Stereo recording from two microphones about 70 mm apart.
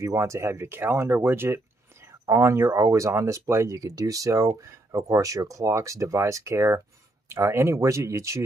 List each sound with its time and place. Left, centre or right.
0.0 s speech: right
2.2 s speech: right